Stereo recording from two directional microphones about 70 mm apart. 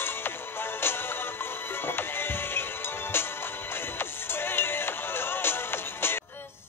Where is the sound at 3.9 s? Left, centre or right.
Left.